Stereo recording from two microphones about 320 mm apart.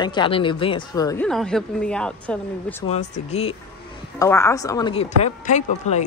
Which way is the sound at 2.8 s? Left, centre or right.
Left.